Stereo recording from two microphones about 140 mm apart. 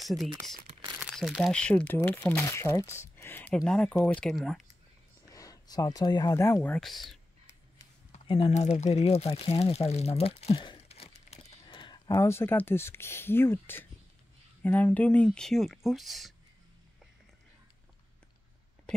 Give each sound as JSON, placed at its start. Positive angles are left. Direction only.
{"t": 0.0, "sound": "speech", "side_deg": 0}
{"t": 2.4, "sound": "speech", "side_deg": 20}
{"t": 3.2, "sound": "a sound", "side_deg": 15}
{"t": 3.5, "sound": "speech", "side_deg": 5}
{"t": 5.3, "sound": "speech", "side_deg": 25}
{"t": 6.8, "sound": "speech", "side_deg": 0}
{"t": 8.3, "sound": "speech", "side_deg": 45}
{"t": 12.1, "sound": "speech", "side_deg": 20}